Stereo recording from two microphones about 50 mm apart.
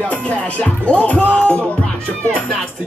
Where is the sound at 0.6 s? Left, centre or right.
Left.